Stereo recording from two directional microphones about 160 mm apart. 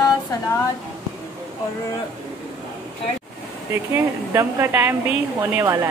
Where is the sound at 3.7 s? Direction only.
15° right (ahead or behind).